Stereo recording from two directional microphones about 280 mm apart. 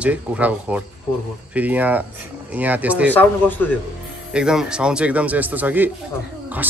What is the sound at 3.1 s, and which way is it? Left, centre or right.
A man's voice, centre.